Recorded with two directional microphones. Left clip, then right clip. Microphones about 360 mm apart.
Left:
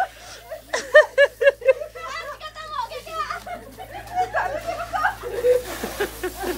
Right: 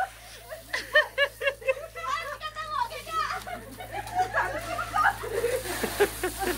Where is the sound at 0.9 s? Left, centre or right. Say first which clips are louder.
Left 10 dB; centre.